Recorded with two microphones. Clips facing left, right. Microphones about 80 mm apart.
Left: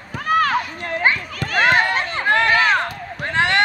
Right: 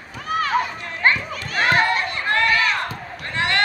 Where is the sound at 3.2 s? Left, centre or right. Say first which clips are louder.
Left 4 dB; left.